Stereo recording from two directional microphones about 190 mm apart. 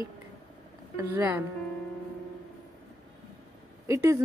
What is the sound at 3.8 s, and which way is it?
Speech, 15° right (ahead or behind).